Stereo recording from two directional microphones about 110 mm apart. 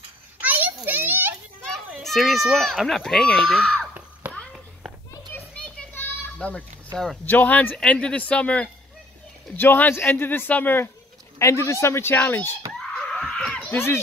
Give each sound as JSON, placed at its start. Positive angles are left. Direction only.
{"t": 0.4, "sound": "a sound", "side_deg": -15}
{"t": 1.7, "sound": "a child's voice", "side_deg": 0}
{"t": 3.9, "sound": "a sound", "side_deg": -10}
{"t": 5.3, "sound": "children playing", "side_deg": 15}
{"t": 7.2, "sound": "a man's voice", "side_deg": 15}
{"t": 11.3, "sound": "a man's voice", "side_deg": 25}
{"t": 12.7, "sound": "screaming", "side_deg": 5}